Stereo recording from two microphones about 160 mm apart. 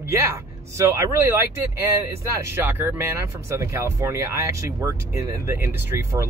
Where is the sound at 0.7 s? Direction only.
15° right (ahead or behind).